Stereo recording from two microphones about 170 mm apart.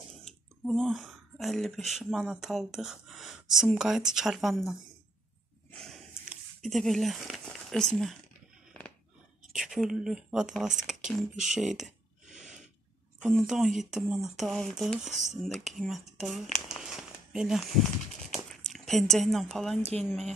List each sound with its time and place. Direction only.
0.1 s speech: centre (ahead or behind)
5.7 s a sound: centre (ahead or behind)
9.5 s speech: 5° right (ahead or behind)
13.2 s speech: centre (ahead or behind)
16.6 s a sound: centre (ahead or behind)
18.7 s speech: centre (ahead or behind)
19.8 s speech: 40° right (ahead or behind)